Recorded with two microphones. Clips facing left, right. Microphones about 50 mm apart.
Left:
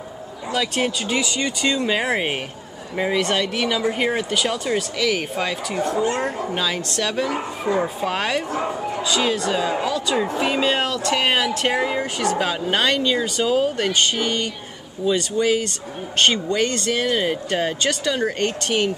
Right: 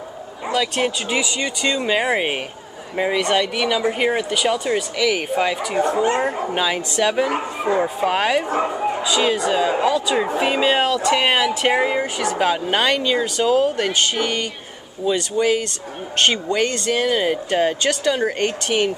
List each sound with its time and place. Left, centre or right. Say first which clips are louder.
0.5 s speech: right 2 dB; centre
8.5 s speech: right 4 dB; right
9.0 s speech: right 1 dB; centre